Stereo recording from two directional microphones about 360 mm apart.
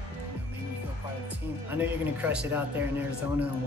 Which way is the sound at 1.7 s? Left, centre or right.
Centre.